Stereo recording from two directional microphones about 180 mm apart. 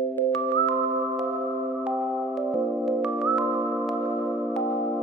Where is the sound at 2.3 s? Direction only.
Centre (ahead or behind).